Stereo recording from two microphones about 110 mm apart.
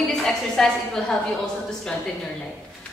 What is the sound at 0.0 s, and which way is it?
A woman's voice, 5° left (ahead or behind).